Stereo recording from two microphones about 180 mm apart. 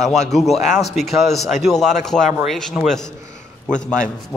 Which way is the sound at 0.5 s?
40° left (ahead or behind).